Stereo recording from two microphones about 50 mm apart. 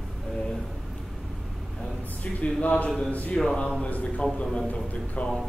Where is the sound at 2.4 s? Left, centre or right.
Left.